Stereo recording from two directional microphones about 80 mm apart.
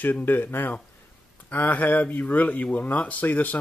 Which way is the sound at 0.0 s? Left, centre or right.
Left.